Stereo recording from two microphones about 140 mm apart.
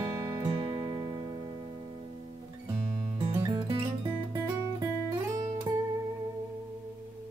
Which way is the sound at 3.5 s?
35° right (ahead or behind).